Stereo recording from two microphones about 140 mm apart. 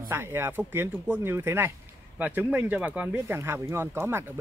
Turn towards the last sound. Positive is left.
turn(degrees=-15)  # may be behind; listen again after turning